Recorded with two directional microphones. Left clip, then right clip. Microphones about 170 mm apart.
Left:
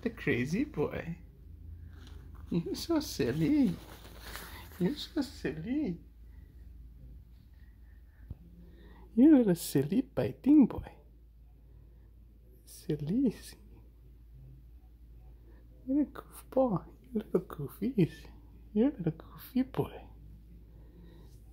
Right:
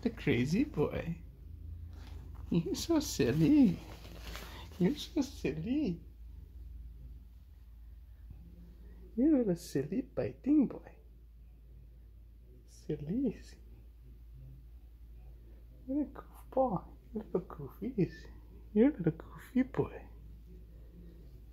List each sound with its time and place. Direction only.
0.0 s speech: 10° right (ahead or behind)
2.5 s speech: 15° right (ahead or behind)
4.1 s a sound: 10° right (ahead or behind)
4.6 s speech: 20° right (ahead or behind)
9.1 s speech: 45° left (ahead or behind)
12.8 s speech: 40° left (ahead or behind)
15.9 s speech: 55° left (ahead or behind)
18.0 s speech: 30° left (ahead or behind)
18.7 s speech: 10° left (ahead or behind)